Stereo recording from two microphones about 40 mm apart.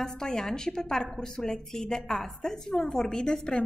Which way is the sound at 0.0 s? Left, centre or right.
Centre.